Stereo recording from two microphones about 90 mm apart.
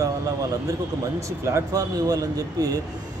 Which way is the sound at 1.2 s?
35° right (ahead or behind).